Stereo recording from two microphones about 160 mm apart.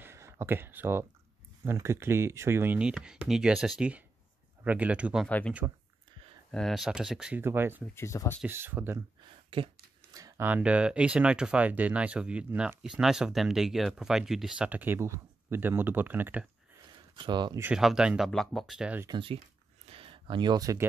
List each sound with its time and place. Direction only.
0.0 s a sound: 15° right (ahead or behind)
1.6 s speech: 15° right (ahead or behind)
5.6 s speech: 20° right (ahead or behind)
6.5 s speech: centre (ahead or behind); by 7.8 s 15° right (ahead or behind)
7.8 s speech: 15° left (ahead or behind)
8.4 s speech: 15° right (ahead or behind)
9.5 s speech: 30° right (ahead or behind)
10.1 s a sound: 20° right (ahead or behind)
10.5 s speech: 10° right (ahead or behind)
17.1 s speech: 30° right (ahead or behind)
17.6 s speech: 5° right (ahead or behind)
19.0 s speech: 30° right (ahead or behind)
19.9 s a sound: 35° right (ahead or behind)